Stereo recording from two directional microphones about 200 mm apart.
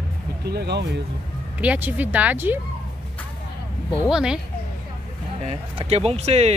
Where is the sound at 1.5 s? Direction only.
10° right (ahead or behind).